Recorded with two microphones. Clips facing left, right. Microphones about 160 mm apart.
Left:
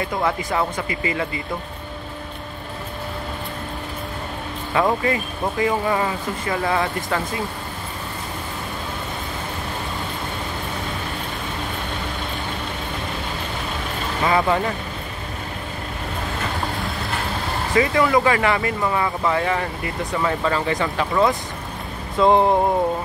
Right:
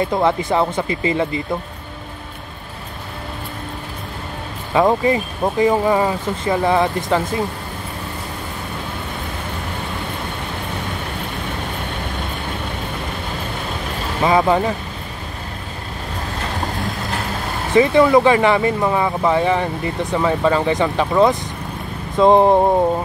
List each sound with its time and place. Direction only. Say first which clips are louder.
0.2 s speech: right 3 dB; 25° right (ahead or behind)
4.7 s speech: right 5 dB; 20° right (ahead or behind)
14.2 s speech: right 4 dB; 20° right (ahead or behind)
17.7 s speech: right 6 dB; 25° right (ahead or behind)